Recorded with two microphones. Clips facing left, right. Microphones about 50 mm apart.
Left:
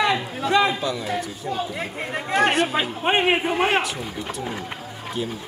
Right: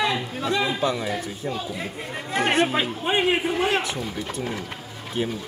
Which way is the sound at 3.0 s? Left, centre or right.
Left.